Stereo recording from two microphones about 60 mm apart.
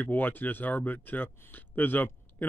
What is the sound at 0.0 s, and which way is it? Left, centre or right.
Speech, left.